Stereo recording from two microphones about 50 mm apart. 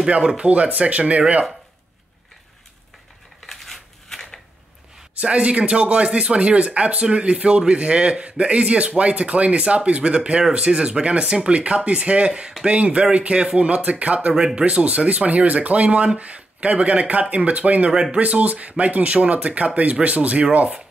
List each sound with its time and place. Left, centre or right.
0.1 s speech: centre
3.4 s crushing: centre
5.2 s speech: right